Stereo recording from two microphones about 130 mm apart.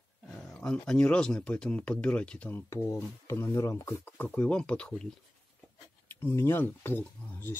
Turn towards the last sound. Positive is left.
turn(degrees=15)  # may be behind; listen again after turning